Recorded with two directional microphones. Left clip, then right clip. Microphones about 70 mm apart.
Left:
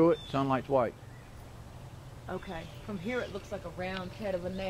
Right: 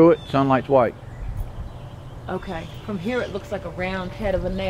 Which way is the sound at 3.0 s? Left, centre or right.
Right.